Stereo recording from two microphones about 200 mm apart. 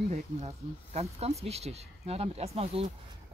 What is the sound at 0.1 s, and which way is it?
Speech, 35° right (ahead or behind).